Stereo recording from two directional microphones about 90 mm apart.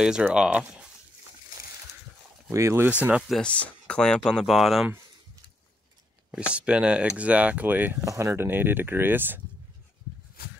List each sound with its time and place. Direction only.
0.3 s speech: 10° right (ahead or behind)
2.5 s speech: 30° right (ahead or behind)
3.2 s speech: centre (ahead or behind)
3.4 s speech: 15° left (ahead or behind)
6.3 s speech: 10° right (ahead or behind)
8.0 s speech: 35° right (ahead or behind)